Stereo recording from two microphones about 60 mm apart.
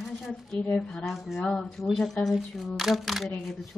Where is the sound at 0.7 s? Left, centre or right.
Left.